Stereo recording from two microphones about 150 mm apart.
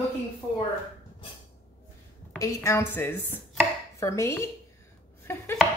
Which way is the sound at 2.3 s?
20° left (ahead or behind).